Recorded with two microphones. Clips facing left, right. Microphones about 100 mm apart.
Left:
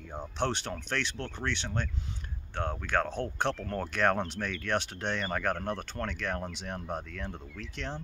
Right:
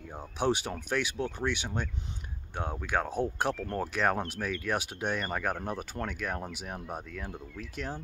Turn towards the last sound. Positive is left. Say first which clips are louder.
# right 1 dB
turn(degrees=-5)  # may be behind; listen again after turning